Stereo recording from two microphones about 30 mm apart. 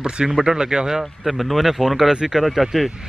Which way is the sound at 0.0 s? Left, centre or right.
Right.